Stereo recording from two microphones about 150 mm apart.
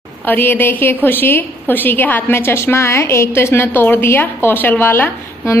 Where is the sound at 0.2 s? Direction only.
15° left (ahead or behind).